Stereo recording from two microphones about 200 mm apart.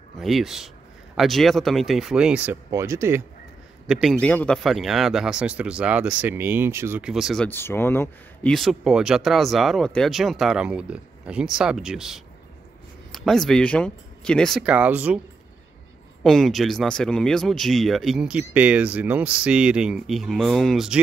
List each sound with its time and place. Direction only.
0.2 s speech: centre (ahead or behind)
3.8 s speech: centre (ahead or behind)
7.4 s speech: 10° left (ahead or behind); by 15.1 s 5° right (ahead or behind)
16.2 s speech: centre (ahead or behind)